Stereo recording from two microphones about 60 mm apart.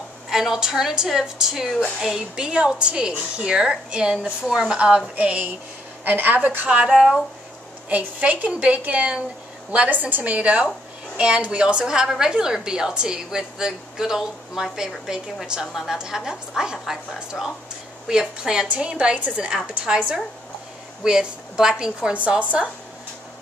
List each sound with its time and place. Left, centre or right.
0.3 s a woman's voice: centre; by 6.7 s right
6.7 s a woman's voice: centre
7.9 s a woman's voice: right
21.0 s a woman's voice: centre